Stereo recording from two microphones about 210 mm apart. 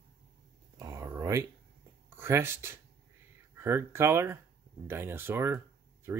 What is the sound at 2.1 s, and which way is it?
Speech, 10° right (ahead or behind).